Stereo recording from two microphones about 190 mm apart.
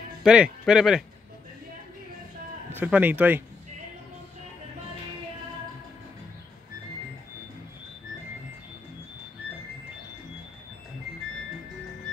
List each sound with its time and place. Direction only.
0.2 s speech: 5° right (ahead or behind)
2.7 s speech: 10° right (ahead or behind)